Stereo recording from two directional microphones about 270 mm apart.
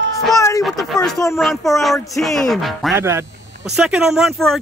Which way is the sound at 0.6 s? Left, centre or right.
Centre.